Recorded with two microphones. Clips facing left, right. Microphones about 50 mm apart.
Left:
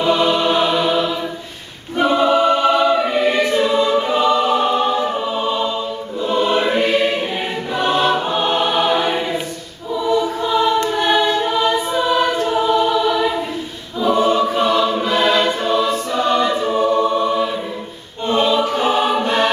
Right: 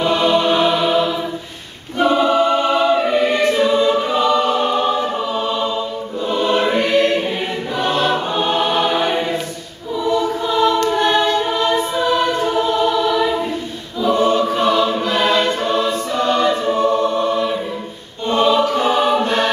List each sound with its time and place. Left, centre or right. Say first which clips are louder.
0.1 s music: left 1 dB; centre
2.0 s choir: even; centre
18.8 s choir: right 1 dB; centre